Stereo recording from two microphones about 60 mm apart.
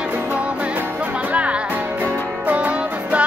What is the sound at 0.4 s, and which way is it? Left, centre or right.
Music, centre.